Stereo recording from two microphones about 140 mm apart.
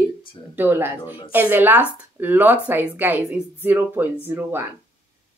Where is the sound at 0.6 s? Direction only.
15° right (ahead or behind).